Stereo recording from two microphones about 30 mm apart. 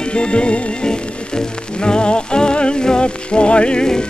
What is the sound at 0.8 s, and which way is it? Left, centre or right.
Music, left.